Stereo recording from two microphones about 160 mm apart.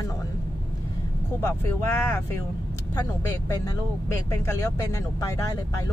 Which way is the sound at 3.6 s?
20° left (ahead or behind).